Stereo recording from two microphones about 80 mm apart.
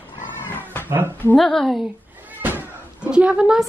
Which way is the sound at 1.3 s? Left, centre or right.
Centre.